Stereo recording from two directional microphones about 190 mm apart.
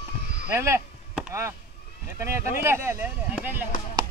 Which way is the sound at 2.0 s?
15° right (ahead or behind).